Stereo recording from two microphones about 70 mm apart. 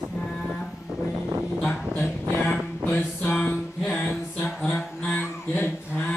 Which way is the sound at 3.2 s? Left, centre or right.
Left.